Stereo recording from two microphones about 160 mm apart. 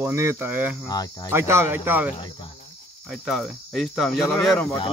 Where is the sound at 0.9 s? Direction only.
25° left (ahead or behind).